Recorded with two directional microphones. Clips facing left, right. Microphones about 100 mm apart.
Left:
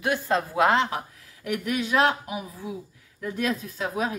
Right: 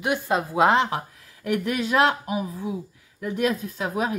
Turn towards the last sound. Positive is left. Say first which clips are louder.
# right 2 dB
turn(degrees=-20)  # may be behind; listen again after turning